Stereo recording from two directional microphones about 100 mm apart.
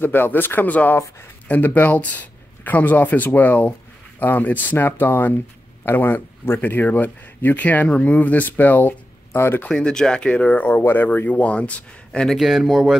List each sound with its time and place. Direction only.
0.0 s speech: 20° left (ahead or behind)
9.7 s speech: 10° left (ahead or behind)